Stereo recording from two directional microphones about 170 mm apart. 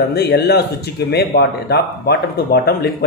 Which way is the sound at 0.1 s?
70° left (ahead or behind).